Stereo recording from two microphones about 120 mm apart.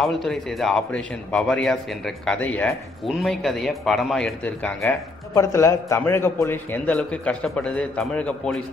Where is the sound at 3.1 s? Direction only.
Centre (ahead or behind).